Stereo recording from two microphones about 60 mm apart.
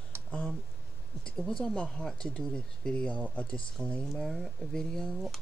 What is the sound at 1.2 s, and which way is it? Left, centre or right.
Speech, centre.